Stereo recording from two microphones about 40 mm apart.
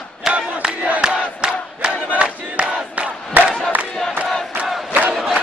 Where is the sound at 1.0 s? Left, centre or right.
Right.